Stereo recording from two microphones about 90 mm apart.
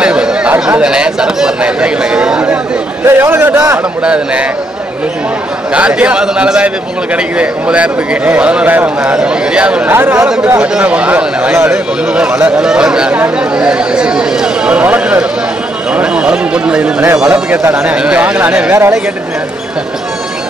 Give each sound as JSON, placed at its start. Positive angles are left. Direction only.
{"t": 0.0, "sound": "a man's voice", "side_deg": -10}
{"t": 3.1, "sound": "a man's voice", "side_deg": -25}
{"t": 4.0, "sound": "a man's voice", "side_deg": -10}
{"t": 5.7, "sound": "a man's voice", "side_deg": -10}
{"t": 9.9, "sound": "a man's voice", "side_deg": -25}
{"t": 10.2, "sound": "a man's voice", "side_deg": -10}